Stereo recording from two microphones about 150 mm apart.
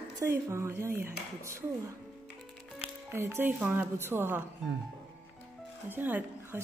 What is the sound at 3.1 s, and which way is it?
Speech, 15° right (ahead or behind).